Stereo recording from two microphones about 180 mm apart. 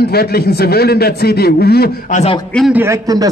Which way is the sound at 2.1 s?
30° left (ahead or behind).